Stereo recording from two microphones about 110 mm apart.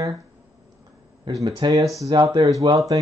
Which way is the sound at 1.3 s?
40° right (ahead or behind).